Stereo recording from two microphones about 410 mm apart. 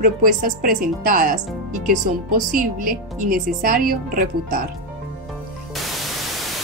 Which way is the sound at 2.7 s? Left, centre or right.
Centre.